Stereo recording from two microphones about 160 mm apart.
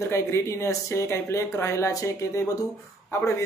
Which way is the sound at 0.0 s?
15° left (ahead or behind).